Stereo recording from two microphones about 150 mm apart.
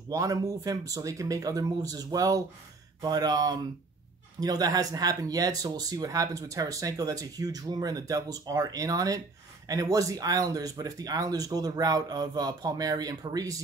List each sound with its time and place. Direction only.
0.1 s speech: 20° right (ahead or behind)